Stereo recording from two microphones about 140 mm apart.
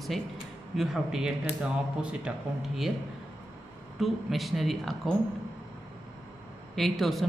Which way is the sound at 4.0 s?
Centre (ahead or behind).